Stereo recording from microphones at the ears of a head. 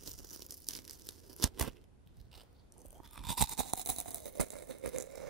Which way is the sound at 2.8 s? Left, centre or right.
Right.